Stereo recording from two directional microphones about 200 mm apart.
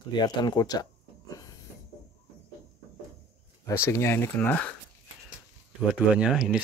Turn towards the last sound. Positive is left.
turn(degrees=-5)  # may be behind; listen again after turning